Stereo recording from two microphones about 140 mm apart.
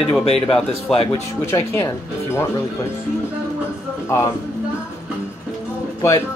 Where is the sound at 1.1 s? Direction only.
20° left (ahead or behind).